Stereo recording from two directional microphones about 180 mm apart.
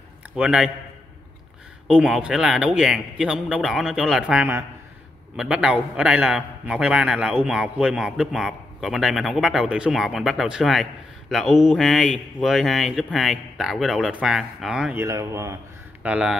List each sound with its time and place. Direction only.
0.4 s a man's voice: 5° right (ahead or behind)
1.9 s a man's voice: 5° right (ahead or behind)
15.0 s speech: 15° right (ahead or behind)
16.0 s speech: 5° right (ahead or behind)